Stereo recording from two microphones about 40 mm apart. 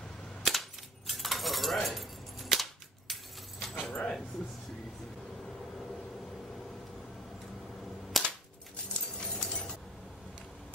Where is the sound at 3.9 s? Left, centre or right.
Centre.